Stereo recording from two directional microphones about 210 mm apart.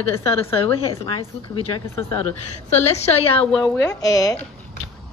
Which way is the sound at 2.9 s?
30° left (ahead or behind).